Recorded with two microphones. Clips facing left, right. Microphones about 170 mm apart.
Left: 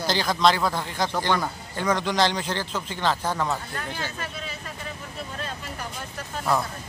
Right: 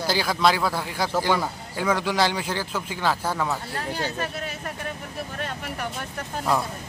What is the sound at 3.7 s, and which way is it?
Speech, 35° right (ahead or behind).